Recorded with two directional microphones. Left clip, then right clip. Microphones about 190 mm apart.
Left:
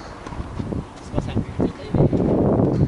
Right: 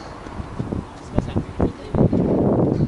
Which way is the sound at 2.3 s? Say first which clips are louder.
Even; 40° right (ahead or behind).